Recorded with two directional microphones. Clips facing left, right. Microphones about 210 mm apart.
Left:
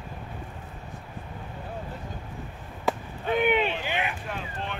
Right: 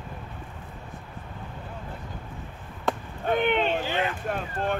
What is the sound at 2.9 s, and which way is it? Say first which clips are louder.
Chop: even; centre (ahead or behind).